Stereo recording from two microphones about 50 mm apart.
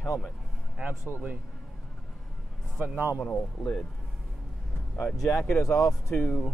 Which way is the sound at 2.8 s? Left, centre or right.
Right.